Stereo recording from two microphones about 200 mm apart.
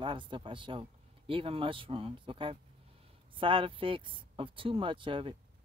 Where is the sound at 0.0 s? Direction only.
25° right (ahead or behind).